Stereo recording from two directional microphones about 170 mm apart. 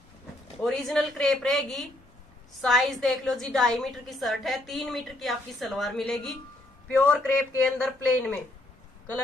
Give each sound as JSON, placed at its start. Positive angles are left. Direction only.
{"t": 0.7, "sound": "a woman's voice", "side_deg": 0}